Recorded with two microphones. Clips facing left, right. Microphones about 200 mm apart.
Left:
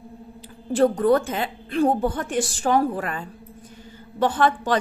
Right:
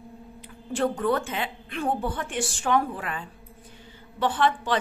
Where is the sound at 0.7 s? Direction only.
40° left (ahead or behind).